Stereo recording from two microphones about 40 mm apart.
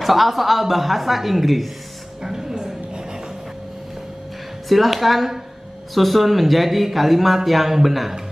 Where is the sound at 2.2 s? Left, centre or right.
Centre.